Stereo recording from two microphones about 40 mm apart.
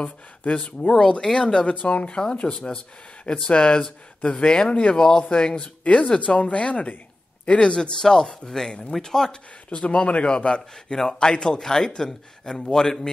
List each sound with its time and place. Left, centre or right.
0.7 s speech: left
1.3 s a man's voice: centre
1.9 s a man's voice: left; by 9.4 s centre
9.7 s a man's voice: left; by 13.1 s centre